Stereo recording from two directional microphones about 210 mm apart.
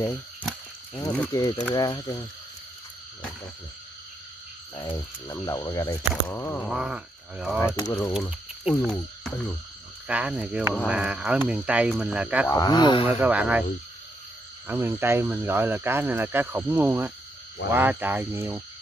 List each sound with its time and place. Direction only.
1.3 s speech: 15° left (ahead or behind)
4.7 s speech: 15° left (ahead or behind)
6.7 s speech: 5° right (ahead or behind)
7.6 s speech: 15° left (ahead or behind)
8.3 s frog: centre (ahead or behind)
10.0 s speech: 5° right (ahead or behind)
12.4 s speech: 15° left (ahead or behind)
13.1 s speech: 5° right (ahead or behind)
14.7 s speech: 10° right (ahead or behind)